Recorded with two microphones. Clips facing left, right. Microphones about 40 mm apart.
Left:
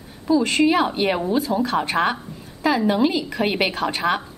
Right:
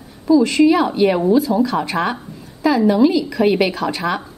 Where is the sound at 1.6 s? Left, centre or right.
Left.